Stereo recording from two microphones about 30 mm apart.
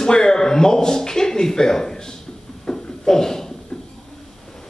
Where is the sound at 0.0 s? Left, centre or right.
Left.